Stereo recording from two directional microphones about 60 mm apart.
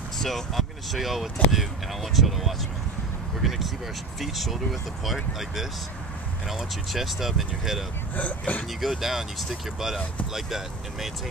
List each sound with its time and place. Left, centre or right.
0.2 s speech: centre
8.2 s speech: left
8.8 s speech: centre